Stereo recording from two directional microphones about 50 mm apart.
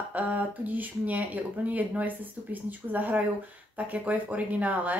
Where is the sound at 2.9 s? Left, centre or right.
Right.